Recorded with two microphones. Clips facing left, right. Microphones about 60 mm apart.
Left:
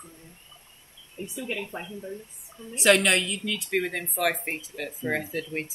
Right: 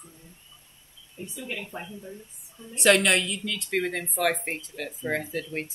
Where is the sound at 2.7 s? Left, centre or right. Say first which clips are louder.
Even; centre.